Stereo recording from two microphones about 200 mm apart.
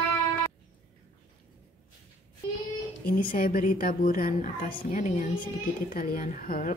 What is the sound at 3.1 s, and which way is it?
A woman's voice, 45° left (ahead or behind).